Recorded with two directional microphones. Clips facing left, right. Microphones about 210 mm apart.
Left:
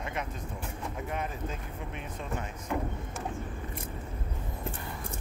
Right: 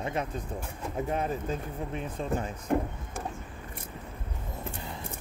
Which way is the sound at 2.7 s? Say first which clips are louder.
Right 5 dB; 50° right (ahead or behind).